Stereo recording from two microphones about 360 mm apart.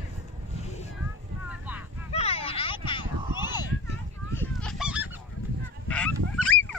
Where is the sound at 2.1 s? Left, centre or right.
Centre.